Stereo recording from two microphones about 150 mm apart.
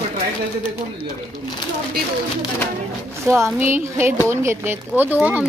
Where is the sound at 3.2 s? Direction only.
20° right (ahead or behind).